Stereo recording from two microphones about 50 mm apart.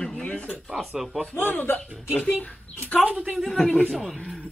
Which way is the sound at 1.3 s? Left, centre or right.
Left.